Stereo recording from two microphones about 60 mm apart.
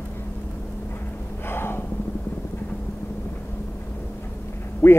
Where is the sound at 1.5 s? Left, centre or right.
Left.